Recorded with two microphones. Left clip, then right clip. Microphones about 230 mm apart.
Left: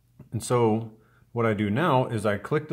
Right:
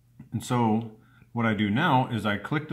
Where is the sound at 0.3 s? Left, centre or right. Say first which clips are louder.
Left 3 dB; left.